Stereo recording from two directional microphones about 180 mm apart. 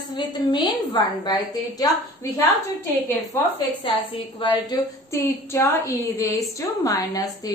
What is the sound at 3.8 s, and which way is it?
A woman's voice, 30° left (ahead or behind).